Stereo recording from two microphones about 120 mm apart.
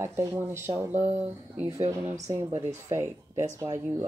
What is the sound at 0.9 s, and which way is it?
Speech, 75° right (ahead or behind).